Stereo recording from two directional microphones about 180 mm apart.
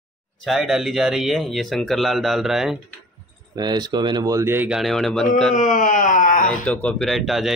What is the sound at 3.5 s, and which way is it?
Speech, 25° right (ahead or behind).